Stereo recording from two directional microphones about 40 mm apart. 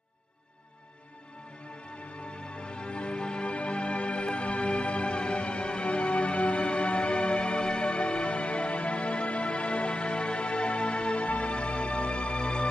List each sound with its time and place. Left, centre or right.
2.5 s music: left